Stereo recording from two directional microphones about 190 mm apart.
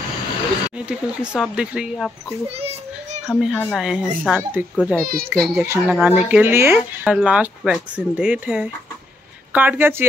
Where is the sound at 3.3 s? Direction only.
Centre (ahead or behind).